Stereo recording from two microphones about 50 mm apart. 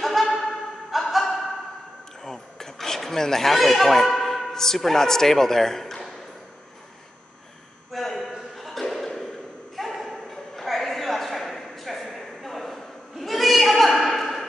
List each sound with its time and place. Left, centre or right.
0.0 s music: centre
2.2 s speech: centre
7.9 s a sound: centre